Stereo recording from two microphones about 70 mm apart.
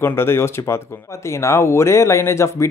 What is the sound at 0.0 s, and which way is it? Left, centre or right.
Speech, left.